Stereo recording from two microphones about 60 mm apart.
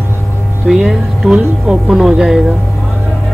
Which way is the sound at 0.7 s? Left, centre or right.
Centre.